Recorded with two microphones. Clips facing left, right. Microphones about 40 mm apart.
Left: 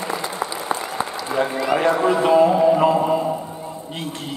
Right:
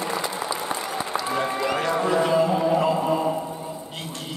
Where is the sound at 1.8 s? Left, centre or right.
Centre.